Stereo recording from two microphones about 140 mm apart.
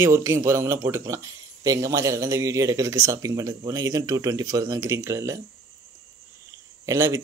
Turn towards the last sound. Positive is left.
turn(degrees=-20)  # may be behind; listen again after turning